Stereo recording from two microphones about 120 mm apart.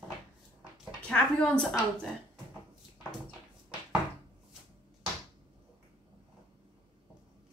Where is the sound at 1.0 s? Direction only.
10° left (ahead or behind).